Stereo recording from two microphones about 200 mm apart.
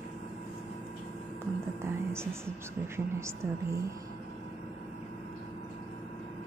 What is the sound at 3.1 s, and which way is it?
Speech, 15° right (ahead or behind).